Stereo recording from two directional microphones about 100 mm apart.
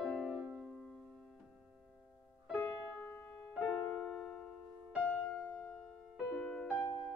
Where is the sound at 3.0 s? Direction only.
15° left (ahead or behind).